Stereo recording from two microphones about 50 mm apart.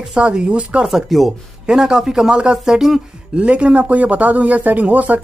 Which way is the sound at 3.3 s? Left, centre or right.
Right.